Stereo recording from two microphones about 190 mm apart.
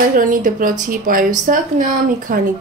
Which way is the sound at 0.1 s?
45° right (ahead or behind).